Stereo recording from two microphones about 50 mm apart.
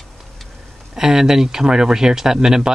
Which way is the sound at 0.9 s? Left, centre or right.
Centre.